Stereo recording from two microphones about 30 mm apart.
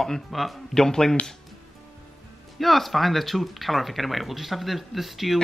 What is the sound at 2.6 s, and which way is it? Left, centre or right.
Speech, centre.